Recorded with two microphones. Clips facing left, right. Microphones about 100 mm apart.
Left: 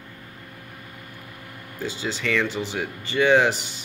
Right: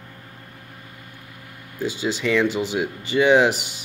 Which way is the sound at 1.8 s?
15° right (ahead or behind).